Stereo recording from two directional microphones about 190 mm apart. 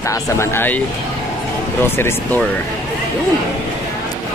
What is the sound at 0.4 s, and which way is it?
Speech, 10° left (ahead or behind).